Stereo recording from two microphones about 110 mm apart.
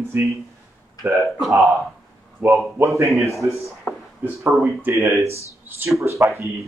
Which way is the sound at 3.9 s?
20° left (ahead or behind).